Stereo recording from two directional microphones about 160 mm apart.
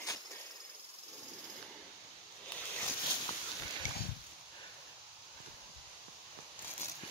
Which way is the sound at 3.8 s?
50° left (ahead or behind).